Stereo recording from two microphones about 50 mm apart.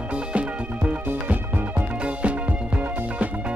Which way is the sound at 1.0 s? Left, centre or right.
Right.